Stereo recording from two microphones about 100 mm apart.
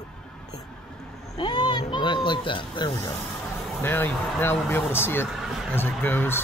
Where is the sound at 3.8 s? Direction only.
20° left (ahead or behind).